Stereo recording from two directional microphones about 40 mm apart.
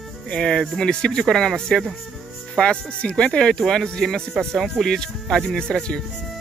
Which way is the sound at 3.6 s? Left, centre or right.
Centre.